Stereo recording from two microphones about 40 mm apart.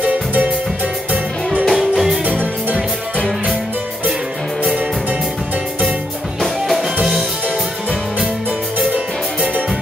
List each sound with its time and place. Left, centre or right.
0.0 s music: right
1.7 s music: centre